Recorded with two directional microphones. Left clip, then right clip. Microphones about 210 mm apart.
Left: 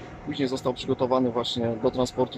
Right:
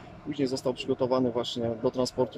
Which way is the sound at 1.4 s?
25° right (ahead or behind).